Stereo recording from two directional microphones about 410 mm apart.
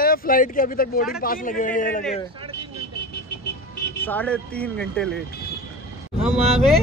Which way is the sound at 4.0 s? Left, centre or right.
Centre.